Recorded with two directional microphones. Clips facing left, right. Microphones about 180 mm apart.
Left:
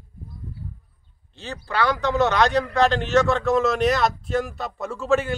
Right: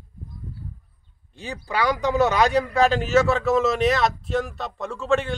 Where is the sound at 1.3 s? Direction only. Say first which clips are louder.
Left 1 dB; 10° right (ahead or behind); by 5.3 s 5° left (ahead or behind).